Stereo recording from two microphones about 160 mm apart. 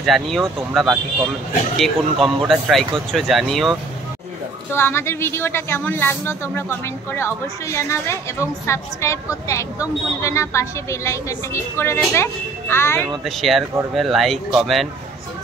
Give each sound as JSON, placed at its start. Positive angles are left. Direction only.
{"t": 0.0, "sound": "speech", "side_deg": 0}
{"t": 4.7, "sound": "speech", "side_deg": 15}
{"t": 13.2, "sound": "speech", "side_deg": 0}